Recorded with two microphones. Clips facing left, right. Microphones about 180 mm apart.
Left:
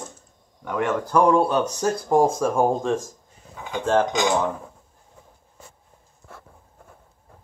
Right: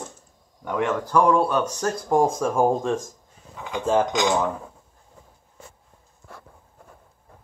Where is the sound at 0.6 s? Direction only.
Centre (ahead or behind).